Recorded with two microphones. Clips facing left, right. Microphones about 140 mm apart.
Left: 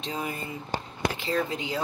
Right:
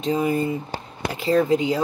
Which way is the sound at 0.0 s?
45° right (ahead or behind).